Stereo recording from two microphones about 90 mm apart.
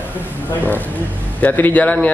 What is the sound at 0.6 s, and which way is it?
Speech, 20° left (ahead or behind).